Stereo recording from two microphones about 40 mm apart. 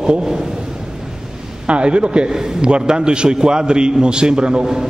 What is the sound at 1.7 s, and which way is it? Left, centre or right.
A man's voice, right.